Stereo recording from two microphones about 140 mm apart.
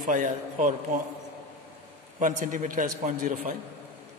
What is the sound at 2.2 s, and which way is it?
A man's voice, 65° right (ahead or behind).